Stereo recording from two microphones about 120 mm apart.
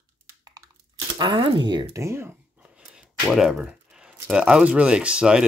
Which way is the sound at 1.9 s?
25° right (ahead or behind).